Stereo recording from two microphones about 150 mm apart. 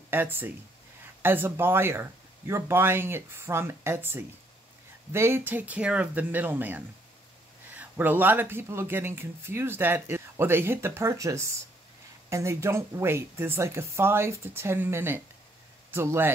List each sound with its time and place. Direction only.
0.1 s speech: 15° right (ahead or behind)